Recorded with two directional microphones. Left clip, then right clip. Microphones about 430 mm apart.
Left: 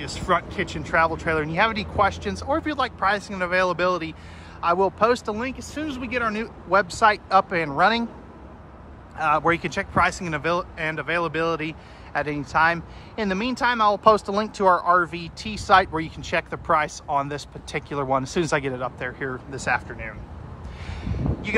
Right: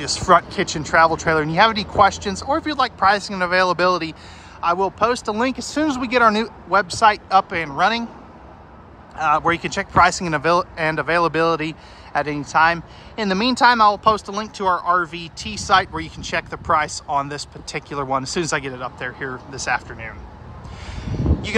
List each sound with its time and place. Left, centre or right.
0.0 s speech: centre
9.1 s speech: centre
21.0 s a sound: centre